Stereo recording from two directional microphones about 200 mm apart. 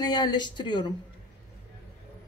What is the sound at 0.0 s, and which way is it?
Speech, 20° left (ahead or behind).